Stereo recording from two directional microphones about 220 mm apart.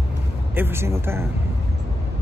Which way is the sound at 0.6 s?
10° right (ahead or behind).